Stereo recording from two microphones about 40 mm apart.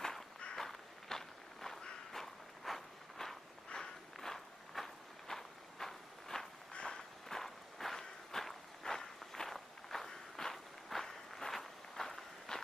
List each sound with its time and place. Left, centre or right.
0.6 s a sound: centre
2.1 s walk: centre
6.7 s walk: left
7.2 s walk: centre